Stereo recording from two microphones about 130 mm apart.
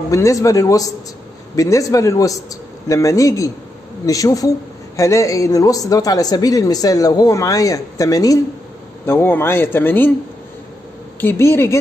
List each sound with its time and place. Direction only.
0.1 s speech: 25° left (ahead or behind)
11.1 s speech: 20° left (ahead or behind)